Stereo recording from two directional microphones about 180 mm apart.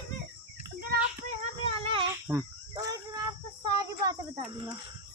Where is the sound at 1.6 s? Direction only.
30° right (ahead or behind).